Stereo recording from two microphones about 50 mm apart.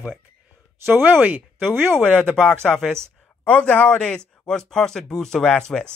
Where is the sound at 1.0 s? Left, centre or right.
Right.